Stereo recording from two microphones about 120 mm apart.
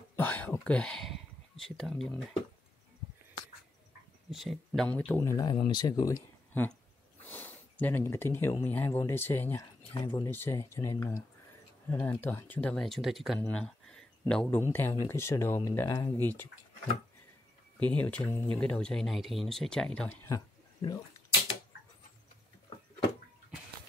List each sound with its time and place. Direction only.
0.1 s throat clearing: 15° left (ahead or behind)
0.7 s speech: 10° left (ahead or behind)
4.3 s speech: centre (ahead or behind)
4.8 s speech: 10° left (ahead or behind)
5.3 s speech: 35° left (ahead or behind)
7.2 s a sound: 15° left (ahead or behind)
8.6 s speech: 15° left (ahead or behind)
9.9 s speech: 40° left (ahead or behind)
10.2 s speech: 20° left (ahead or behind)
14.6 s speech: 20° left (ahead or behind)
17.7 s speech: 10° left (ahead or behind)
20.2 s a sound: 30° left (ahead or behind)